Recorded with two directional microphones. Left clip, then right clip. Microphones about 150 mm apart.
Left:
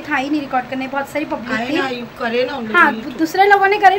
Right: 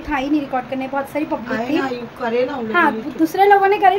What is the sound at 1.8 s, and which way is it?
Speech, 50° right (ahead or behind).